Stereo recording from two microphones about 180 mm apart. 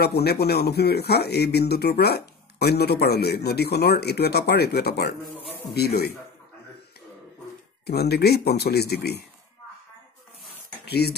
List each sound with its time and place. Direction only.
0.0 s a man's voice: 60° left (ahead or behind)
7.8 s a man's voice: 65° left (ahead or behind)
10.9 s speech: 65° left (ahead or behind)